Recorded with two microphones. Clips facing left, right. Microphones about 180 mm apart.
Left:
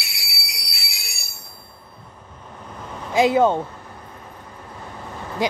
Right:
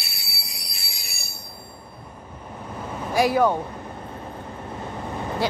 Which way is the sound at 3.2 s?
20° left (ahead or behind).